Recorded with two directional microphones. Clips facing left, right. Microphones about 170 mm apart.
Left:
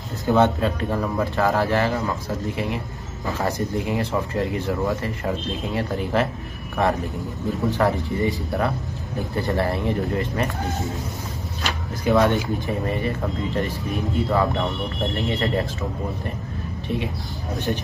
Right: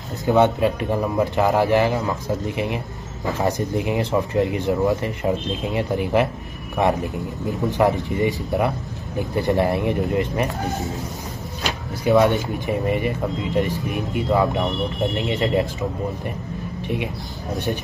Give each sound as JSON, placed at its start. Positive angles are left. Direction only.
{"t": 0.2, "sound": "speech", "side_deg": -15}
{"t": 12.1, "sound": "speech", "side_deg": -20}
{"t": 14.3, "sound": "speech", "side_deg": -15}
{"t": 17.7, "sound": "speech", "side_deg": -10}